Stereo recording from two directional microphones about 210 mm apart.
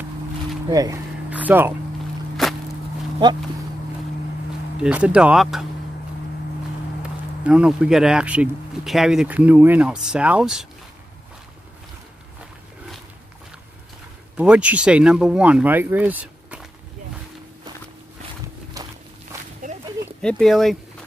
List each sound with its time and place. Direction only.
0.7 s speech: 15° right (ahead or behind)
2.4 s music: centre (ahead or behind)
3.2 s speech: 20° right (ahead or behind)
4.7 s speech: 5° right (ahead or behind)
7.0 s speech: 5° right (ahead or behind)
14.3 s speech: 5° right (ahead or behind)
18.8 s walk: 15° right (ahead or behind)
19.6 s a sound: 35° right (ahead or behind)
20.2 s speech: 5° left (ahead or behind)